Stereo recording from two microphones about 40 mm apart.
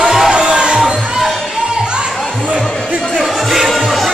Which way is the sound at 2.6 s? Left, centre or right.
Centre.